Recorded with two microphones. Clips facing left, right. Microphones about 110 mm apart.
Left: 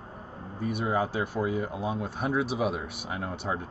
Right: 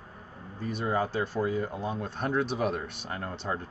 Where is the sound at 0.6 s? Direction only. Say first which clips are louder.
Left 1 dB; 10° left (ahead or behind).